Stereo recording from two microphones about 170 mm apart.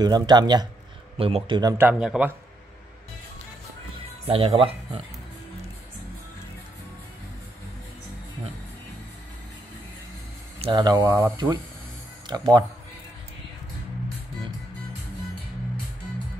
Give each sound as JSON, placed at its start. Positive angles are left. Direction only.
{"t": 0.0, "sound": "speech", "side_deg": -25}
{"t": 1.9, "sound": "speech", "side_deg": -5}
{"t": 4.3, "sound": "speech", "side_deg": -35}
{"t": 10.6, "sound": "speech", "side_deg": -25}
{"t": 11.1, "sound": "speech", "side_deg": -10}
{"t": 11.3, "sound": "speech", "side_deg": -25}